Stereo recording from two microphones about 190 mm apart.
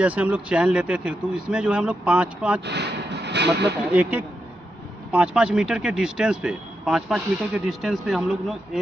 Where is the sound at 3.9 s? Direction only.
10° right (ahead or behind).